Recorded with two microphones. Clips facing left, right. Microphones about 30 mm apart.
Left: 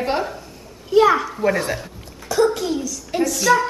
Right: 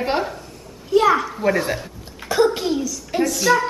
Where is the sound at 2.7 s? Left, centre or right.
Centre.